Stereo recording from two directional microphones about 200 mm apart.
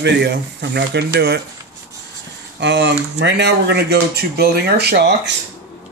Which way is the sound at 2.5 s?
60° right (ahead or behind).